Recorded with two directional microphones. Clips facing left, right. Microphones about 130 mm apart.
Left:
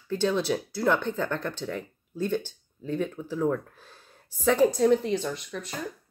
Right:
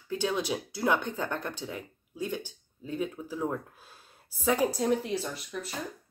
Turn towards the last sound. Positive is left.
turn(degrees=-5)  # may be behind; listen again after turning